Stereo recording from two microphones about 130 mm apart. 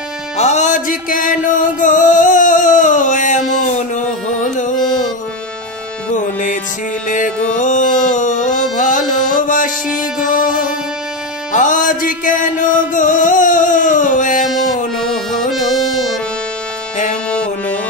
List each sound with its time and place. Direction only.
0.4 s music: 65° left (ahead or behind)
6.1 s music: 80° left
8.7 s music: 90° left
15.0 s music: 5° left (ahead or behind)
17.3 s music: 10° left (ahead or behind)